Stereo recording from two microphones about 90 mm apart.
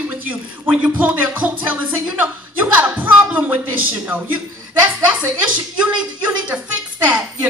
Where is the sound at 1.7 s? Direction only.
20° right (ahead or behind).